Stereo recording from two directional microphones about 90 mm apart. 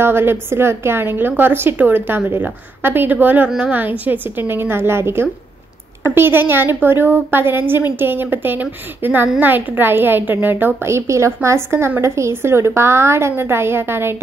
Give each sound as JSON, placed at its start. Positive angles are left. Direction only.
{"t": 0.0, "sound": "a woman's voice", "side_deg": -25}
{"t": 3.4, "sound": "a woman's voice", "side_deg": -5}
{"t": 3.7, "sound": "a woman's voice", "side_deg": -20}